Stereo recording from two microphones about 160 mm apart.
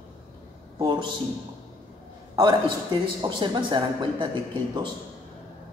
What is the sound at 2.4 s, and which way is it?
Speech, 30° right (ahead or behind).